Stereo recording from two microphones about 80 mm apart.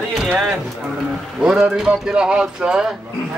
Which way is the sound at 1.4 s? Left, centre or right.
Centre.